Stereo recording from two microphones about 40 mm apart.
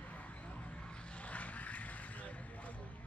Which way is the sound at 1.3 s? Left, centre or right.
Left.